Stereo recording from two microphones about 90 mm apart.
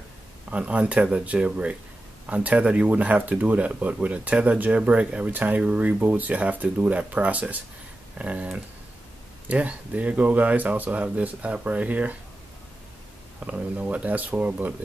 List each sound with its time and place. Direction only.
0.5 s speech: 15° right (ahead or behind)
9.5 s speech: 15° right (ahead or behind)
13.5 s speech: 15° right (ahead or behind)